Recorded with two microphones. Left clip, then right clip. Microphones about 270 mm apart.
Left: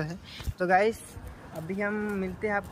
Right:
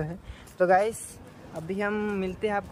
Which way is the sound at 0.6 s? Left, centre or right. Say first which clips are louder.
Right 2 dB; right.